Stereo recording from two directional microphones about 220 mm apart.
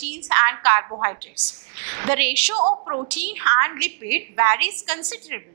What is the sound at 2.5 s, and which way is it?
Speech, 25° right (ahead or behind).